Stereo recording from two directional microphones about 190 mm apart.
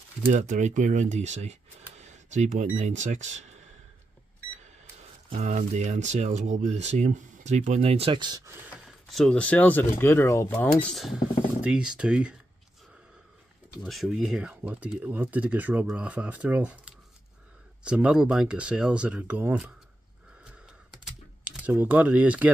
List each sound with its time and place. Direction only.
0.3 s speech: 40° right (ahead or behind)
5.3 s speech: 45° right (ahead or behind); by 12.4 s 5° right (ahead or behind)
13.8 s speech: centre (ahead or behind)
20.6 s typing: centre (ahead or behind)